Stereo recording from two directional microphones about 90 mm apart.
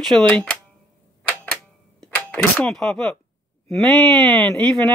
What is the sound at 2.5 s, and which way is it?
Speech, 5° left (ahead or behind).